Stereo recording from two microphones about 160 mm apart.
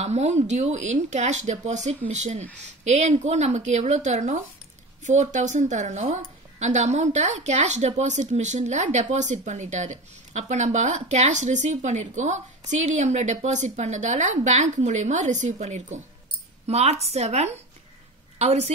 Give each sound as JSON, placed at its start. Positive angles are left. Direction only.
{"t": 0.0, "sound": "a woman's voice", "side_deg": -45}